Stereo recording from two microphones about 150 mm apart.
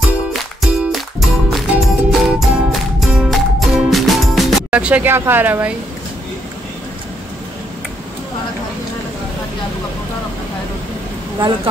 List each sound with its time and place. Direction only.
0.3 s music: centre (ahead or behind)